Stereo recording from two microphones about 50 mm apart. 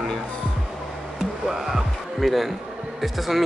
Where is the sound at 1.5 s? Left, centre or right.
Centre.